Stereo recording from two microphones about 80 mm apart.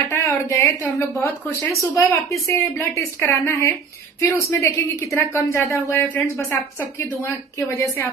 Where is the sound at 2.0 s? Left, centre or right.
Left.